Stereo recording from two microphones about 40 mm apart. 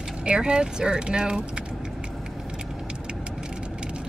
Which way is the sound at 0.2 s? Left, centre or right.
Right.